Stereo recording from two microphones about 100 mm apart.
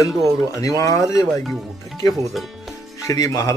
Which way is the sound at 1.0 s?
5° right (ahead or behind).